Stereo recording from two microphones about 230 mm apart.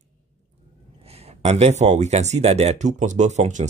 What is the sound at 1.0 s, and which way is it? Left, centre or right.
Speech, right.